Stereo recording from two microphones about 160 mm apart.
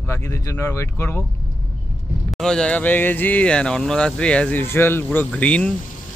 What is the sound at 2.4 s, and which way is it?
Speech, 5° left (ahead or behind).